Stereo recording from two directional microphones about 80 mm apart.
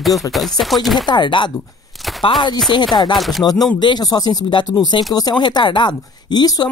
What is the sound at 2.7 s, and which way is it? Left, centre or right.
Speech, left.